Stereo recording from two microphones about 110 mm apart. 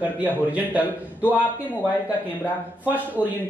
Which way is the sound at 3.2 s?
10° right (ahead or behind).